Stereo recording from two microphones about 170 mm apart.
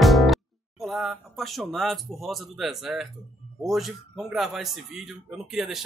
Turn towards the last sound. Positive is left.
turn(degrees=0)  # may be behind; listen again after turning